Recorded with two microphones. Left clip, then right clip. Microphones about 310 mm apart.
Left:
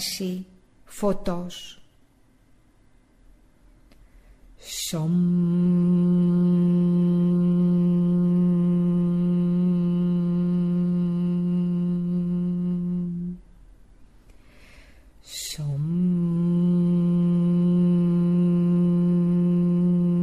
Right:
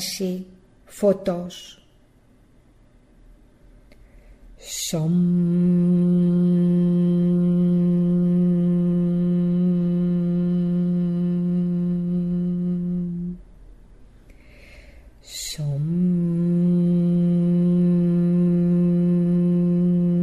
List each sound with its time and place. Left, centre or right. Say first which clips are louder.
0.0 s a sound: right 3 dB; left
0.8 s a woman's voice: right 6 dB; left
4.6 s mantra: right 3 dB; left
14.5 s snort: right 4 dB; left
15.9 s mantra: right 2 dB; left